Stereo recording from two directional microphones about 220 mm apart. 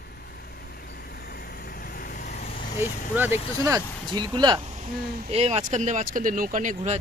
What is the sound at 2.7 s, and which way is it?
Speech, 10° right (ahead or behind).